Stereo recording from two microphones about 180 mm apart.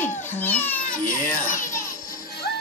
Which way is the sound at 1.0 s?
45° left (ahead or behind).